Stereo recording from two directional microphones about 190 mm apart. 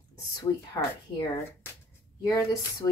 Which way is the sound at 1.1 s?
15° left (ahead or behind).